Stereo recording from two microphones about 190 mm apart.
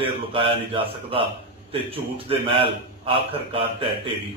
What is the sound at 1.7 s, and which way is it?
A man's voice, 30° right (ahead or behind).